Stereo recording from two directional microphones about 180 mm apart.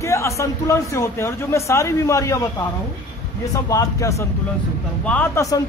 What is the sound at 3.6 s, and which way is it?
A man's voice, 20° left (ahead or behind).